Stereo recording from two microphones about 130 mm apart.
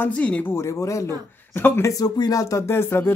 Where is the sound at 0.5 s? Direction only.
20° left (ahead or behind).